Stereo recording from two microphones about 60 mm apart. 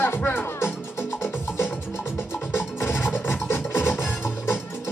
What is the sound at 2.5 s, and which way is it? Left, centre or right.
Music, left.